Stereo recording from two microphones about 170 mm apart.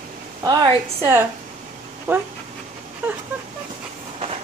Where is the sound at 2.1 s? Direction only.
15° right (ahead or behind).